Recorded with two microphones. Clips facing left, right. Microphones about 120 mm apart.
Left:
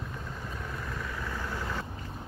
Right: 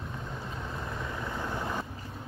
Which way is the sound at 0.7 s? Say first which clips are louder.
Right 2 dB; 25° right (ahead or behind).